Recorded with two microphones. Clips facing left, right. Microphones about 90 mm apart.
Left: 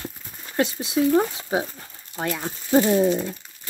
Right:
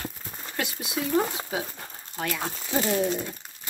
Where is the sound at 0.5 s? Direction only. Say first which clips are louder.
Left 9 dB; 30° left (ahead or behind).